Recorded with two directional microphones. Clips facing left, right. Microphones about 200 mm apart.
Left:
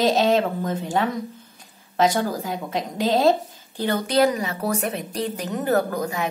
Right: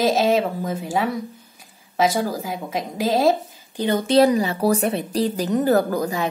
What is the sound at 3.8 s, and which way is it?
Speech, 25° right (ahead or behind).